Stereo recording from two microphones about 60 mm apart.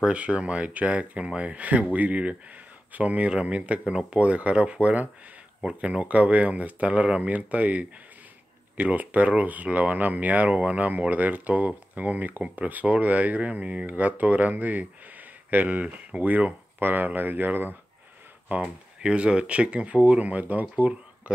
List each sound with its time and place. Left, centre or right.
0.0 s speech: right
18.5 s speech: centre